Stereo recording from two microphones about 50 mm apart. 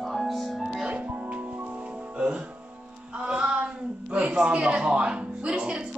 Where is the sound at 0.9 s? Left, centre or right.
Right.